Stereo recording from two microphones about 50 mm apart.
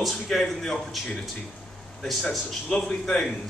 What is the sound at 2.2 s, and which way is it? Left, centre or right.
A man's voice, centre.